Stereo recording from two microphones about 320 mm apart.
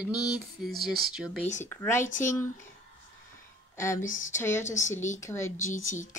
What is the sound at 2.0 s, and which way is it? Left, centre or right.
Speech, left.